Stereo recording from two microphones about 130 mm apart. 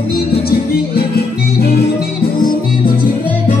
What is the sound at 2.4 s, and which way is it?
Music, 90° left.